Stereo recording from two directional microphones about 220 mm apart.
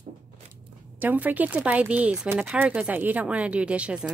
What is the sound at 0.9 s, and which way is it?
A woman's voice, 5° right (ahead or behind).